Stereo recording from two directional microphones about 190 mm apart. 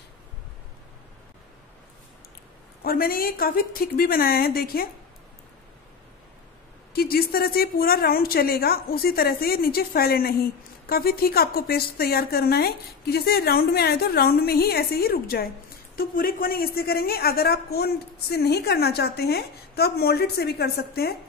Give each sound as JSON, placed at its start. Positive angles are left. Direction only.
{"t": 2.8, "sound": "a woman's voice", "side_deg": 50}
{"t": 6.9, "sound": "a woman's voice", "side_deg": 55}